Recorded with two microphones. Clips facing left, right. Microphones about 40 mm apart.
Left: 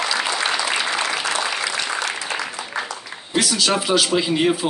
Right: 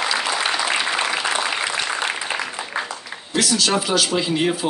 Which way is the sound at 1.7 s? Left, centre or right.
Centre.